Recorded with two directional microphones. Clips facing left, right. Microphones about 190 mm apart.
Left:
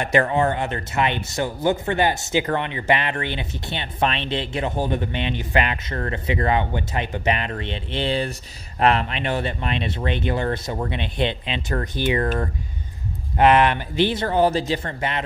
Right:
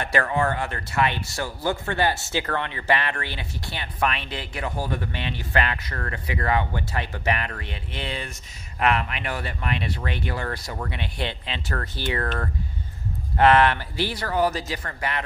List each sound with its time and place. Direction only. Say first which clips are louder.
0.0 s speech: left 4 dB; 20° left (ahead or behind)
13.4 s speech: left 1 dB; 15° left (ahead or behind)